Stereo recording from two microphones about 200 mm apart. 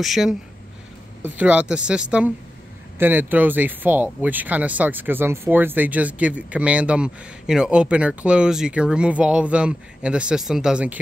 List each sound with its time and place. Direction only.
0.0 s speech: centre (ahead or behind)